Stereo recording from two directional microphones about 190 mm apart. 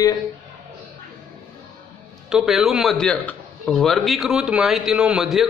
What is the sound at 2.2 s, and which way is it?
A man's voice, centre (ahead or behind).